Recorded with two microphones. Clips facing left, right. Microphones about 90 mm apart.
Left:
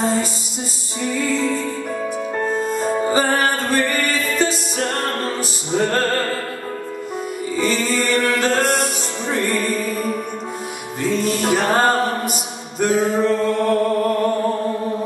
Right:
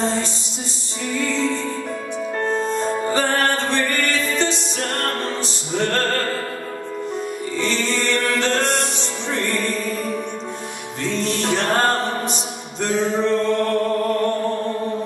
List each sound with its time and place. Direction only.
0.0 s music: 5° left (ahead or behind)
7.5 s music: 5° left (ahead or behind)
12.8 s a sound: 5° left (ahead or behind)